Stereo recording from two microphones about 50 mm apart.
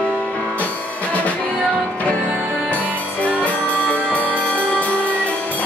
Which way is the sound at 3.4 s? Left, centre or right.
Left.